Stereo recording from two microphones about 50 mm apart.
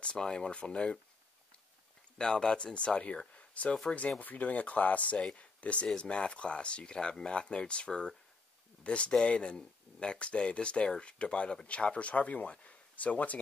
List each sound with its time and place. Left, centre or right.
0.0 s speech: centre
2.1 s speech: centre